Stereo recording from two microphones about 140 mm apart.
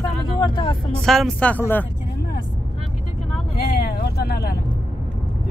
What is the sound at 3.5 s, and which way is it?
Vehicle, 90° left.